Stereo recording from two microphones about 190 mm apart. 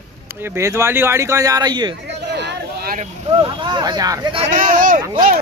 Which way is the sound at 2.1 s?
60° right (ahead or behind).